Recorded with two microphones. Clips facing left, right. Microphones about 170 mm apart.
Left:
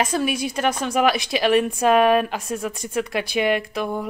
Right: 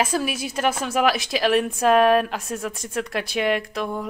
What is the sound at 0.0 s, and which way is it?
Speech, 5° right (ahead or behind).